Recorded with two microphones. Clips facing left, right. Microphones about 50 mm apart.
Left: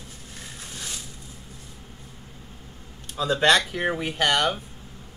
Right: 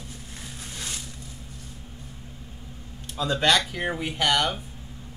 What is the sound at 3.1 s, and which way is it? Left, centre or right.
Speech, centre.